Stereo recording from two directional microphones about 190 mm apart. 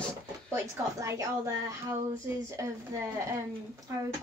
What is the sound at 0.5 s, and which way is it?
A woman's voice, 15° right (ahead or behind).